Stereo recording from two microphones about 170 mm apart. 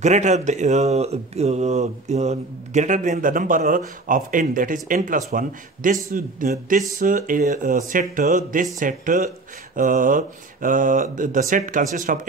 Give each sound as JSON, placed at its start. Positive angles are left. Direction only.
{"t": 0.0, "sound": "a man's voice", "side_deg": -45}